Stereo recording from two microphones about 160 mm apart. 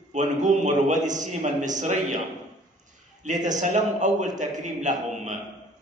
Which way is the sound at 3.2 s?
50° right (ahead or behind).